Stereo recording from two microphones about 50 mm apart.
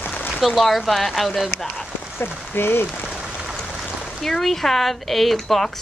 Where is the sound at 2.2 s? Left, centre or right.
Left.